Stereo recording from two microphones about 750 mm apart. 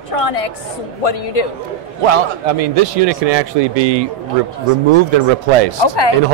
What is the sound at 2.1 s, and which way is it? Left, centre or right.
A man's voice, right.